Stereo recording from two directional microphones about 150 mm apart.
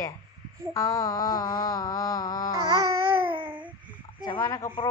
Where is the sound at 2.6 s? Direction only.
25° right (ahead or behind).